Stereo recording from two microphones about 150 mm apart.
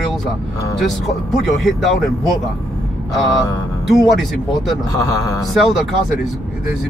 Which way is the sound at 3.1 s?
Centre (ahead or behind).